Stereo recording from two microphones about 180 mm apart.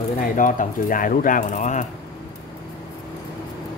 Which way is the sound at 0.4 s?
45° left (ahead or behind).